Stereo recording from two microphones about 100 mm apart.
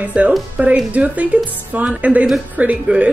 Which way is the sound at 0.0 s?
15° right (ahead or behind).